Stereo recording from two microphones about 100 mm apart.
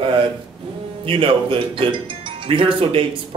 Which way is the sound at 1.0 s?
65° right (ahead or behind).